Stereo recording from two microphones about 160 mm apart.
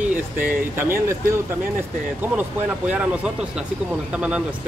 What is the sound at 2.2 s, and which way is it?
Speech, 10° right (ahead or behind).